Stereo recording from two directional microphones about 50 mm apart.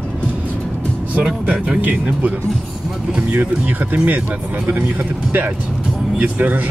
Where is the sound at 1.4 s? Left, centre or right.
Right.